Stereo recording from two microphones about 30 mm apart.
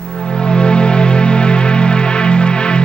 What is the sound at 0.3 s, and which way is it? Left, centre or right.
Music, left.